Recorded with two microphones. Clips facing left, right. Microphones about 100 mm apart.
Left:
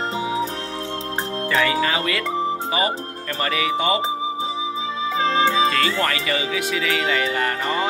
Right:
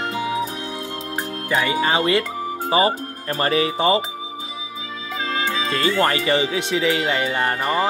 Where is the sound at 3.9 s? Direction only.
30° left (ahead or behind).